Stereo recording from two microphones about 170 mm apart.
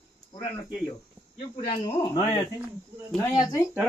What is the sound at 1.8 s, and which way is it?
Speech, 25° left (ahead or behind).